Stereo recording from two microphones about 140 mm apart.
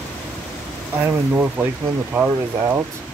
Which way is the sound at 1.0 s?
15° right (ahead or behind).